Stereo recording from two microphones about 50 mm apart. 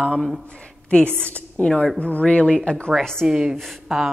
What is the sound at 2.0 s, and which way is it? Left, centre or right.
Speech, left.